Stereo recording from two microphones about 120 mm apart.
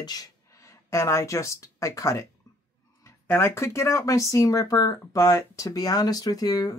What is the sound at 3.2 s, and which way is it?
Speech, 15° left (ahead or behind).